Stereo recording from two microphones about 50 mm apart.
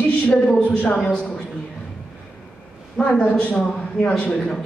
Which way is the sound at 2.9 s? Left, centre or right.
Centre.